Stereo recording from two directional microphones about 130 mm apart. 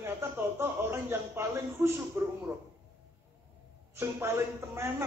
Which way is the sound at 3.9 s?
20° right (ahead or behind).